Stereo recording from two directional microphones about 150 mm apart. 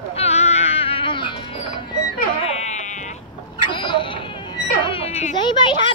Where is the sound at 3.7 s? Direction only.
30° left (ahead or behind).